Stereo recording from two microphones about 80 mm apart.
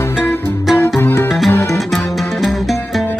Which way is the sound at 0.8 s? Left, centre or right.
Left.